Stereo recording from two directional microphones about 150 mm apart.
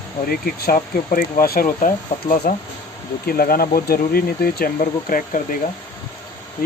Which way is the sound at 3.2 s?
85° left.